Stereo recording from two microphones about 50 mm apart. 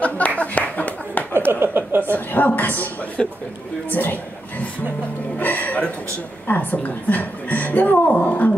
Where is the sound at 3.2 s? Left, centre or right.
Centre.